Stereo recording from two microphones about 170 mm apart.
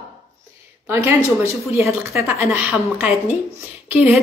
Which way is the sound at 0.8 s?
10° right (ahead or behind).